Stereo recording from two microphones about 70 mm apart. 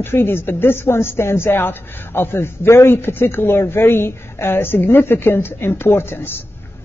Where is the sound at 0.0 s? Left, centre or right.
Left.